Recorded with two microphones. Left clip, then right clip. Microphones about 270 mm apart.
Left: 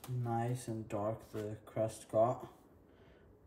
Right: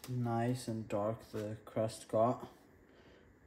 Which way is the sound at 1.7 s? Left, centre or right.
Right.